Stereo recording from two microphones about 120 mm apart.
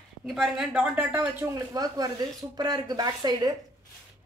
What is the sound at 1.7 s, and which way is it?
Speech, 30° right (ahead or behind).